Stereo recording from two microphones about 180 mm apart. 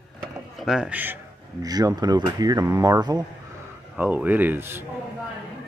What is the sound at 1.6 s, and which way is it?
Speech, 20° right (ahead or behind).